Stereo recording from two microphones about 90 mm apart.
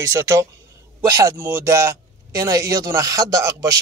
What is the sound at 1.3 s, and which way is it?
A man's voice, 25° right (ahead or behind).